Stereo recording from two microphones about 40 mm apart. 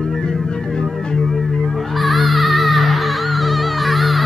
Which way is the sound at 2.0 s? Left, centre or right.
Centre.